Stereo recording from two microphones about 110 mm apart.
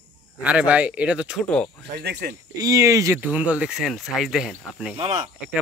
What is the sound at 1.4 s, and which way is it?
Speech, 10° left (ahead or behind).